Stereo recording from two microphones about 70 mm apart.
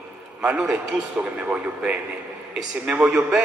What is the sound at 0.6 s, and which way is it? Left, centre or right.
A man's voice, right.